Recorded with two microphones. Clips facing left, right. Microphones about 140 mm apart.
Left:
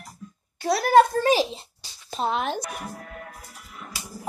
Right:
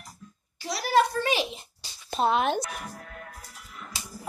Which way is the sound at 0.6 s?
55° left (ahead or behind).